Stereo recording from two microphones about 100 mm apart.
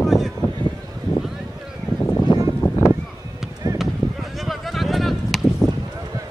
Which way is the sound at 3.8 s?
Centre (ahead or behind).